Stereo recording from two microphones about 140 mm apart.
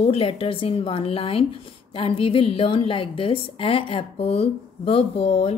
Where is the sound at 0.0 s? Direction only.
45° left (ahead or behind).